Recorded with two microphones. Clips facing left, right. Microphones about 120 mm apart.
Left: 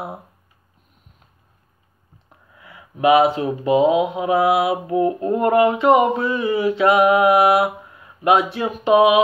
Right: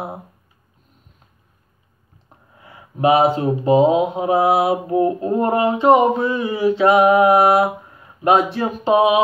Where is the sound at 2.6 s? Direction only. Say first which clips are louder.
Right 2 dB; 35° right (ahead or behind).